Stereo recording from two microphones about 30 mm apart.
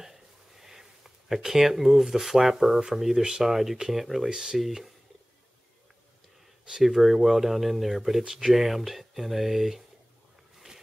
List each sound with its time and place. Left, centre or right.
0.0 s a sound: centre
2.9 s speech: centre
3.2 s speech: right
3.9 s speech: centre
4.3 s speech: right
4.6 s speech: centre
6.8 s speech: centre